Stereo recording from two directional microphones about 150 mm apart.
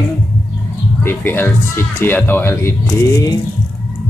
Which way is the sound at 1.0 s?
15° left (ahead or behind).